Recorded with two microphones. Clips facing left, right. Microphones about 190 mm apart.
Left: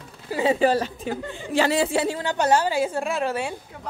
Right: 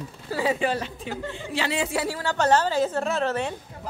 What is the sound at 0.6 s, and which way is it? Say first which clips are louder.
A woman's voice: left 6 dB; 40° left (ahead or behind).